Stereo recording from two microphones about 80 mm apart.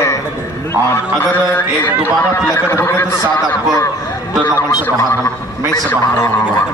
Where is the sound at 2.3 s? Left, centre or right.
Left.